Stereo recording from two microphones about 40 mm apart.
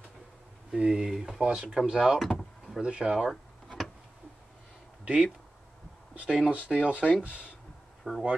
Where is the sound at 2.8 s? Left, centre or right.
Right.